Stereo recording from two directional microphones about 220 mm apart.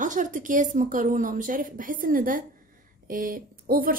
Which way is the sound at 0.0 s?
35° right (ahead or behind).